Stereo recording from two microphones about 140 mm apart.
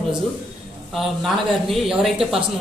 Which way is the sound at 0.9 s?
Centre (ahead or behind).